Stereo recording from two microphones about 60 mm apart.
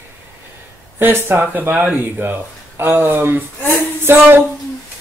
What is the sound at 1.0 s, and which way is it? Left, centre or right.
Speech, right.